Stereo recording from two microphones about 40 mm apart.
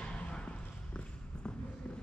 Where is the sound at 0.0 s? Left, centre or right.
Left.